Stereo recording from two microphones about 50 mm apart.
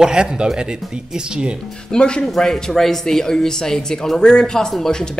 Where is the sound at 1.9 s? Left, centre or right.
Centre.